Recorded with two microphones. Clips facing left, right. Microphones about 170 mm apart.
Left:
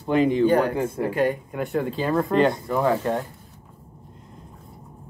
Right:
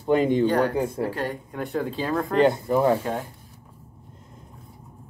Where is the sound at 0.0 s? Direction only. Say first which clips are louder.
Left 1 dB; 5° left (ahead or behind).